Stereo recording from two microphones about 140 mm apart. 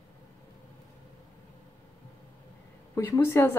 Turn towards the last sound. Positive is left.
turn(degrees=20)  # may be behind; listen again after turning